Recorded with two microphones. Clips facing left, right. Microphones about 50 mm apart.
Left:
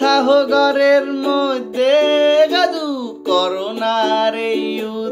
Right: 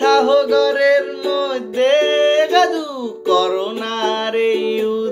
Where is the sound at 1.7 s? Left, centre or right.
Right.